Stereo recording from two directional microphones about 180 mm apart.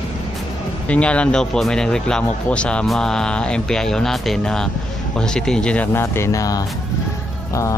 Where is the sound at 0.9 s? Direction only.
5° left (ahead or behind).